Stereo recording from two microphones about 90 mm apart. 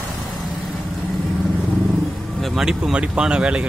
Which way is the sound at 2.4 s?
5° right (ahead or behind).